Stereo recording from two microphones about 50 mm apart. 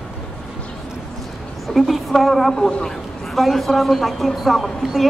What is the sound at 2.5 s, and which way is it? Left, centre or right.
Speech, centre.